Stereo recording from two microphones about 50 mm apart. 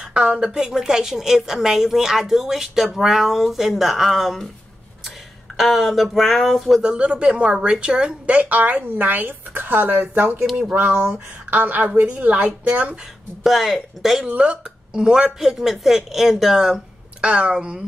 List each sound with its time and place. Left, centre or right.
0.0 s a woman's voice: centre
5.6 s speech: centre
6.8 s a woman's voice: centre
13.4 s speech: centre
14.4 s a woman's voice: centre
15.6 s a woman's voice: centre